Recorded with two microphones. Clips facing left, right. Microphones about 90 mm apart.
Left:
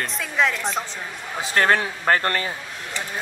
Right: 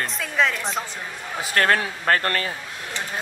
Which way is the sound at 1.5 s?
25° left (ahead or behind).